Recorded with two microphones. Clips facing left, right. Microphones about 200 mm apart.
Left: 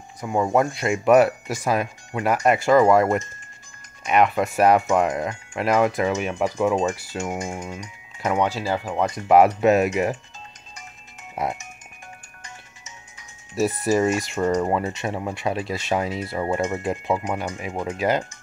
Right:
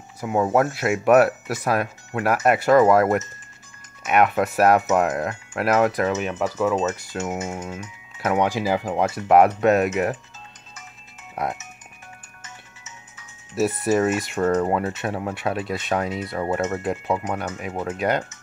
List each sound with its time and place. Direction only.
0.2 s speech: 5° right (ahead or behind)
6.2 s speech: 10° left (ahead or behind)
7.2 s speech: 5° right (ahead or behind)
11.4 s speech: centre (ahead or behind)
13.8 s speech: 5° right (ahead or behind)